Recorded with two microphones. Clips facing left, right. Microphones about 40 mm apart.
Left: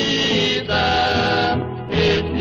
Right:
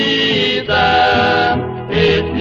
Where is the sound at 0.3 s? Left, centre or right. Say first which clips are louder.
Right 4 dB; right.